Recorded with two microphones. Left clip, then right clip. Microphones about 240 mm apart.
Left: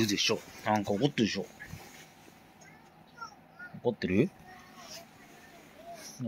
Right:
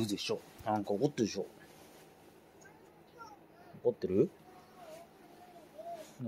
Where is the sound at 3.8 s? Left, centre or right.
Centre.